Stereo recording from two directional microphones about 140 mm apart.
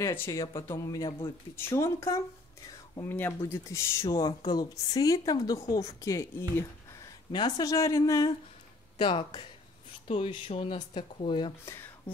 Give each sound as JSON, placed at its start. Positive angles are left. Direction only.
{"t": 0.0, "sound": "speech", "side_deg": 20}